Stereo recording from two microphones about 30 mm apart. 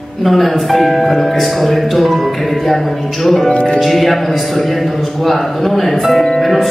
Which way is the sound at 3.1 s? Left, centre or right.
Centre.